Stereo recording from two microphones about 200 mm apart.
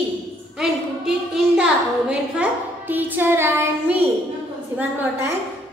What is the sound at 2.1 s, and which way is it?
Speech, 10° right (ahead or behind).